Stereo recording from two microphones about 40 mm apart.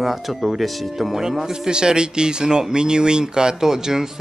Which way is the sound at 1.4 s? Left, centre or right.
Centre.